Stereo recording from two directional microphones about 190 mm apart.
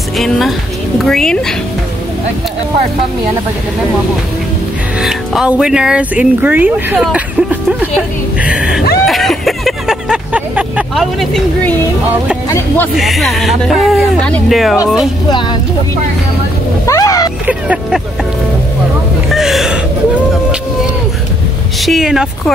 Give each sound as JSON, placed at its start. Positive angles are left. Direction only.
{"t": 0.2, "sound": "speech", "side_deg": 0}
{"t": 5.0, "sound": "speech", "side_deg": -5}
{"t": 9.0, "sound": "vehicle", "side_deg": 0}
{"t": 12.4, "sound": "speech", "side_deg": 10}
{"t": 12.9, "sound": "speech", "side_deg": 0}
{"t": 16.8, "sound": "speech", "side_deg": 15}
{"t": 17.5, "sound": "speech", "side_deg": -5}
{"t": 19.3, "sound": "speech", "side_deg": 0}
{"t": 21.8, "sound": "speech", "side_deg": 0}